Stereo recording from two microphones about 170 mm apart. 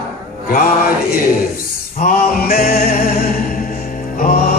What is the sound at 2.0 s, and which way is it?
Music, 55° left (ahead or behind).